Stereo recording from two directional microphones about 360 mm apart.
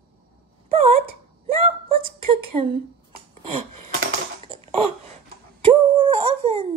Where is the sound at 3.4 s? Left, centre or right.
Right.